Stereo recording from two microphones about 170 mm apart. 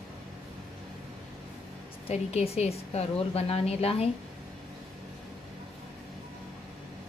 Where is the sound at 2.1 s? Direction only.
40° left (ahead or behind).